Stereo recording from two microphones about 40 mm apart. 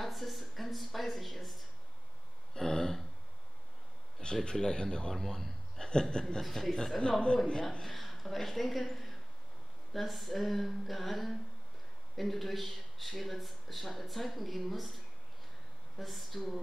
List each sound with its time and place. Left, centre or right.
0.0 s speech: centre
2.5 s throat clearing: centre
4.2 s speech: left
5.1 s speech: centre
5.8 s chuckle: centre
6.4 s speech: centre
7.0 s speech: left
7.8 s speech: centre
16.0 s speech: centre